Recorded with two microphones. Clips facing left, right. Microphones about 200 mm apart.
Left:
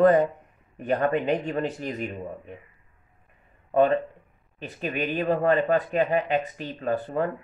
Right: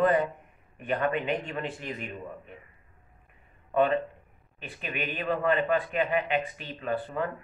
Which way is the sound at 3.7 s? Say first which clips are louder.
Left 4 dB; 40° left (ahead or behind).